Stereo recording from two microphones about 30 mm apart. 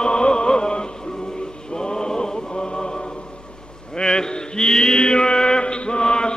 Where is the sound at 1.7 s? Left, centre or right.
Left.